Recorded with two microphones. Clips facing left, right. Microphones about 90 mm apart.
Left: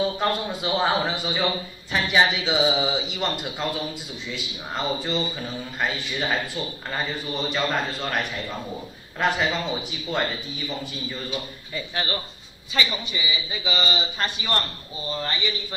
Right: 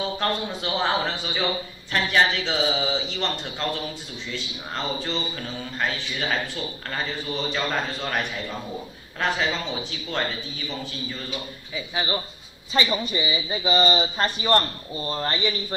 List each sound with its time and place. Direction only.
0.0 s speech: 5° left (ahead or behind)
11.7 s speech: 15° right (ahead or behind)
12.7 s speech: 40° right (ahead or behind)